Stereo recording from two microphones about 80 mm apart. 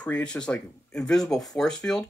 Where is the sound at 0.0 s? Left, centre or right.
Centre.